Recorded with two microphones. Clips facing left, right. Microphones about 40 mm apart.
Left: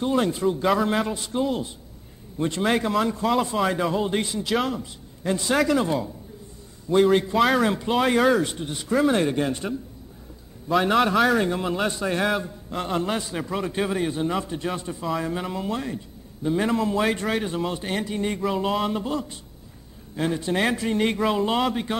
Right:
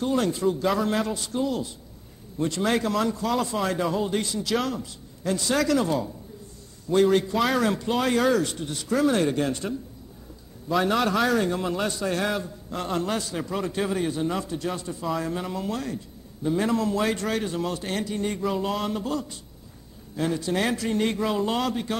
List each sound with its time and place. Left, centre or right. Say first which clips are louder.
0.0 s a man's voice: left 1 dB; centre
4.1 s a man's voice: left 1 dB; left
15.0 s a man's voice: left 1 dB; centre